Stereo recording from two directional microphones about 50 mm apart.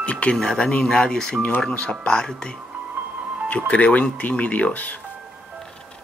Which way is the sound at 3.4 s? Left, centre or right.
Left.